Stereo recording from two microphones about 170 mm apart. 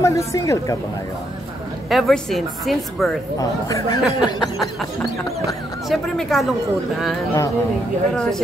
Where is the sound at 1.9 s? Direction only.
Centre (ahead or behind).